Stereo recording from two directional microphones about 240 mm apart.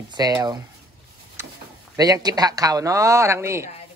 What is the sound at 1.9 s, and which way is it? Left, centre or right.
Speech, centre.